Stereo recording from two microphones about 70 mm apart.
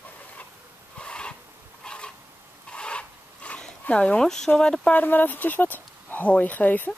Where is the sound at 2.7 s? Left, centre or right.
Centre.